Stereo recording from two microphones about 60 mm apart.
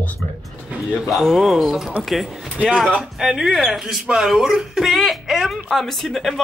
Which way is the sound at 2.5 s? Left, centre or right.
Right.